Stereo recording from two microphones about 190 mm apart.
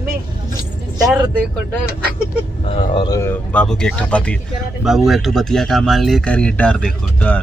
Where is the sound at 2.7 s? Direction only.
25° left (ahead or behind).